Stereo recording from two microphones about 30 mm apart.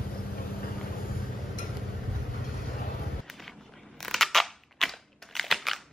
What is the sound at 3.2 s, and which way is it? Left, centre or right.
Music, centre.